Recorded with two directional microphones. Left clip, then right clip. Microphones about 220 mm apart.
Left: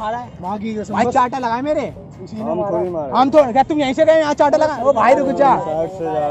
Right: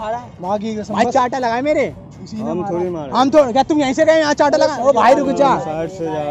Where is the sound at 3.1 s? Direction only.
15° right (ahead or behind).